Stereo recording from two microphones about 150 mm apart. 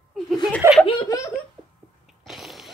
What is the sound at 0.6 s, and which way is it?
Speech, 20° right (ahead or behind).